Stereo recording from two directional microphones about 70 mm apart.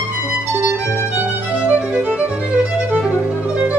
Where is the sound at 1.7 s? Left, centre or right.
Right.